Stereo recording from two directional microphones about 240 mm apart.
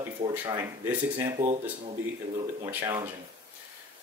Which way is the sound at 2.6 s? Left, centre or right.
Centre.